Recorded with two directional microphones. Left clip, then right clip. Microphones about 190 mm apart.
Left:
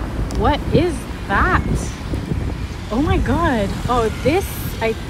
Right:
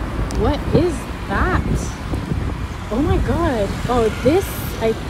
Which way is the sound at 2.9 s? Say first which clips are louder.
Left 1 dB; centre (ahead or behind).